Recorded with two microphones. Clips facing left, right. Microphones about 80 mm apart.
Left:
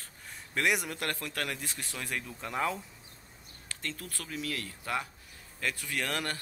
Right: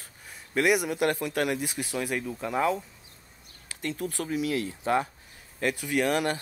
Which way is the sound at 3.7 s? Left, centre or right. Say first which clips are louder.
Right 8 dB; centre.